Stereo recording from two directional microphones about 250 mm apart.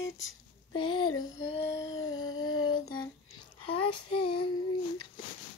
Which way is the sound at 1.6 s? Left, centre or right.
Left.